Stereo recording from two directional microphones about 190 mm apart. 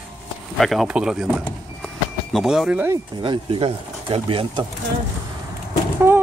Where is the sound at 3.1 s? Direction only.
25° right (ahead or behind).